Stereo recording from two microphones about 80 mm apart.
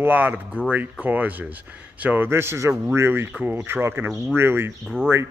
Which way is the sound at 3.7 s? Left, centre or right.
Right.